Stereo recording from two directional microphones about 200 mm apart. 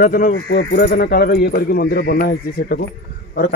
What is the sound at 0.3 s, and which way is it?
Speech, 60° left (ahead or behind).